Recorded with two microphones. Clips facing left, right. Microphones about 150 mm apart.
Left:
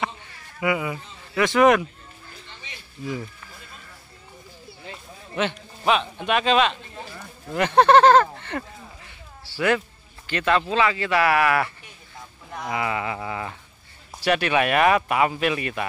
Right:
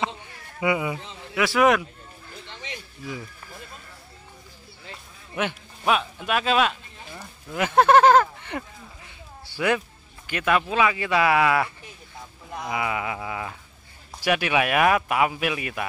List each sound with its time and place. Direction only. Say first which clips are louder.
0.6 s speech: even; 20° right (ahead or behind)
1.3 s speech: left 3 dB; 5° right (ahead or behind)
2.6 s a sound: right 9 dB; 90° right
5.3 s speech: left 2 dB; 10° right (ahead or behind)
10.2 s speech: left 1 dB; 10° right (ahead or behind)